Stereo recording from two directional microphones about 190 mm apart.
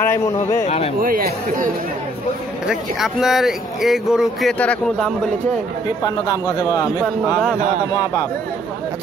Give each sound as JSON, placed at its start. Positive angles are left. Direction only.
{"t": 0.0, "sound": "speech", "side_deg": 15}
{"t": 0.7, "sound": "speech", "side_deg": 35}
{"t": 1.0, "sound": "speech", "side_deg": -50}
{"t": 2.6, "sound": "speech", "side_deg": 0}
{"t": 6.0, "sound": "a man's voice", "side_deg": 20}